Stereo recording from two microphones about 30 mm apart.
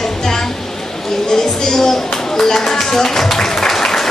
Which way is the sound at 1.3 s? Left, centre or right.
Centre.